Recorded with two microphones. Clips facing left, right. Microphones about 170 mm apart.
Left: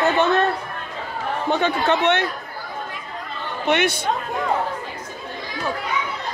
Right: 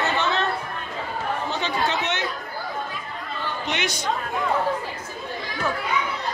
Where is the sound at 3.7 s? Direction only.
55° left (ahead or behind).